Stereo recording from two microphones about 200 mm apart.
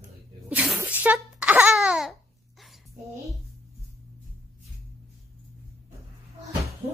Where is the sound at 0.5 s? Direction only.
5° right (ahead or behind).